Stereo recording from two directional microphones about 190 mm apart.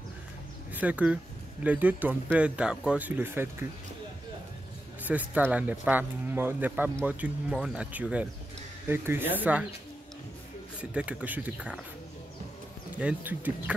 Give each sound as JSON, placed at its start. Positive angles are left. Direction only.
{"t": 0.7, "sound": "speech", "side_deg": -5}
{"t": 5.0, "sound": "speech", "side_deg": -10}
{"t": 10.8, "sound": "speech", "side_deg": -5}
{"t": 12.9, "sound": "speech", "side_deg": -10}